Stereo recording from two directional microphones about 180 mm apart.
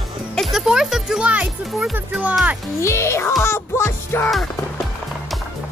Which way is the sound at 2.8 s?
15° left (ahead or behind).